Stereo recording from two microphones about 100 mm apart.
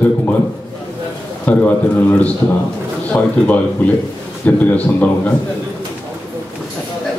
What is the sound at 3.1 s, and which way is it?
A man's voice, 15° left (ahead or behind).